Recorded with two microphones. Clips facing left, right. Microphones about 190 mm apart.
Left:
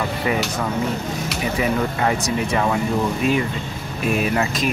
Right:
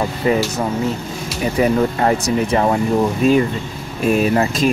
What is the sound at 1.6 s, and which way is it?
Speech, 40° right (ahead or behind).